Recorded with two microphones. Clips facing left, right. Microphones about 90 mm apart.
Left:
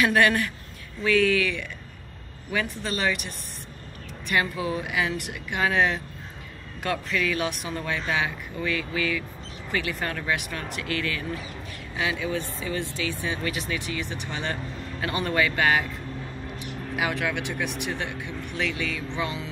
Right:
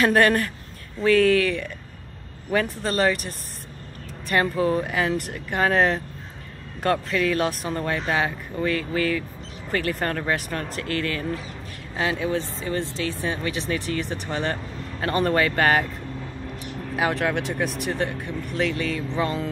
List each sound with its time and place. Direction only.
0.0 s speech: 40° right (ahead or behind)
7.2 s speech: 40° right (ahead or behind)
16.9 s speech: 35° right (ahead or behind)